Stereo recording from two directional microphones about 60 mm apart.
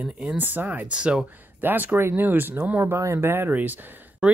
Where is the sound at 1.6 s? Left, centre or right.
Right.